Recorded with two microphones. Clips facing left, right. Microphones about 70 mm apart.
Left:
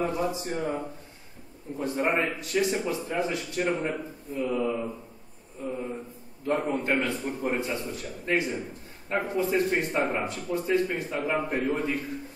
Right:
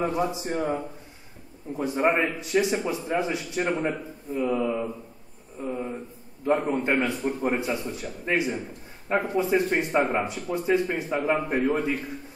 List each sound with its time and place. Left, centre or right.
0.0 s a man's voice: right